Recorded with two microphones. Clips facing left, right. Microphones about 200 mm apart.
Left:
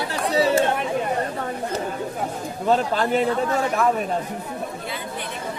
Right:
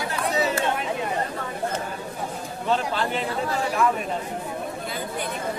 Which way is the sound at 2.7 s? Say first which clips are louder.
Left 5 dB; 45° left (ahead or behind).